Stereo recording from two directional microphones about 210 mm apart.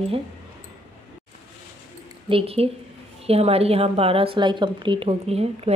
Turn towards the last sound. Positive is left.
turn(degrees=-30)  # may be behind; listen again after turning